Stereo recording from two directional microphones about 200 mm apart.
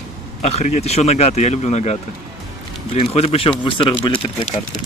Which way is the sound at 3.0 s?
30° left (ahead or behind).